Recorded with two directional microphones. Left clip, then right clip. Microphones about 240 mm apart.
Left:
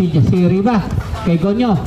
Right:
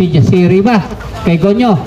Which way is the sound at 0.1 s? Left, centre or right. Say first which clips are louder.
Right 6 dB; right.